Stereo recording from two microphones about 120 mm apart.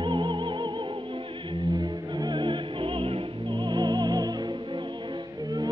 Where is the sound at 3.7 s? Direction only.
35° right (ahead or behind).